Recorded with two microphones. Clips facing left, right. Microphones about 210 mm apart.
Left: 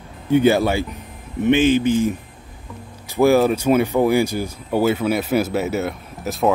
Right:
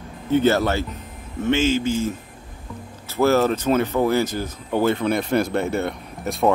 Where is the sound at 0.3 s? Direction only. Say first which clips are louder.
Left 3 dB; 15° left (ahead or behind).